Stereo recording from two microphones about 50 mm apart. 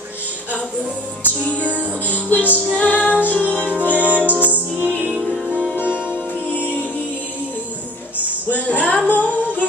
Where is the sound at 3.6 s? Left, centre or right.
Right.